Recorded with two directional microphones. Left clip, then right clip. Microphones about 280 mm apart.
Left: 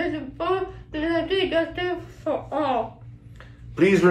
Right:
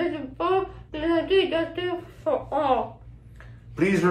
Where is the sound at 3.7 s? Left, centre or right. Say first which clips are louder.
Left 5 dB; centre.